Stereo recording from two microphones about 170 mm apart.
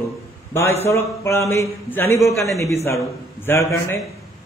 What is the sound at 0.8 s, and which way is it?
A man's voice, 15° left (ahead or behind).